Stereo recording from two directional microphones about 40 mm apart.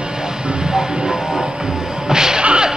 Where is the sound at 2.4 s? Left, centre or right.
Right.